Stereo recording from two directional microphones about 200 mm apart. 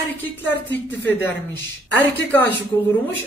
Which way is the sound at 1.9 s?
10° left (ahead or behind).